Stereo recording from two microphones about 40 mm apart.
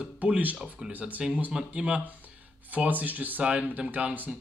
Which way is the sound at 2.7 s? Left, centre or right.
Right.